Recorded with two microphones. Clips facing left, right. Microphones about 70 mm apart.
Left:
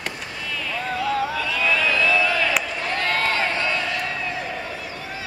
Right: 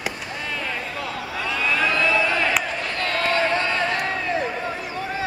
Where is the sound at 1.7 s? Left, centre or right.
Right.